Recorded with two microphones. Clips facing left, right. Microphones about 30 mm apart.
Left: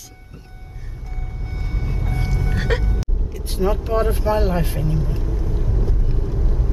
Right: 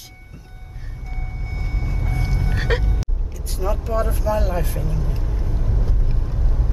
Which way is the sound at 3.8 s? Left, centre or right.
Left.